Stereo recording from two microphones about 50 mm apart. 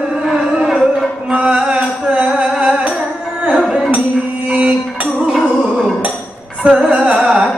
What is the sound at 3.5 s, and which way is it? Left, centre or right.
Music, centre.